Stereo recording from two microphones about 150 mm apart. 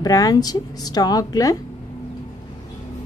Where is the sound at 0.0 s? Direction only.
25° left (ahead or behind).